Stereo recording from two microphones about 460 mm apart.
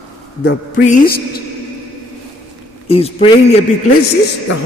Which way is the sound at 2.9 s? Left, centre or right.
Centre.